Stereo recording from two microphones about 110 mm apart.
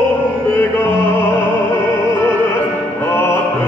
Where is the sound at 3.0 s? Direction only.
20° left (ahead or behind).